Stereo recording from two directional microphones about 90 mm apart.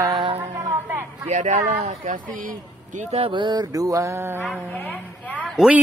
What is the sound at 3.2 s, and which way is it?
Mantra, 60° right (ahead or behind).